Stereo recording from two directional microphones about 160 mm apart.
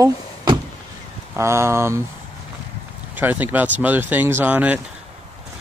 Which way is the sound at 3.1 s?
10° right (ahead or behind).